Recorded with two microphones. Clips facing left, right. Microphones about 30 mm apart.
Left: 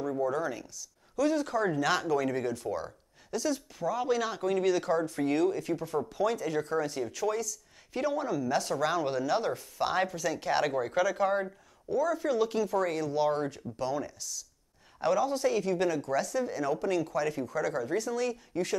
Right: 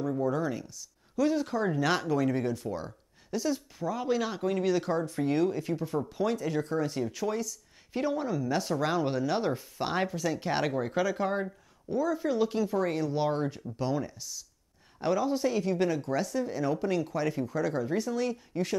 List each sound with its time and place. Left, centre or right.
0.2 s a sound: centre
1.1 s speech: centre
10.7 s speech: centre
11.0 s speech: centre
11.2 s speech: centre
11.9 s speech: right
12.2 s speech: centre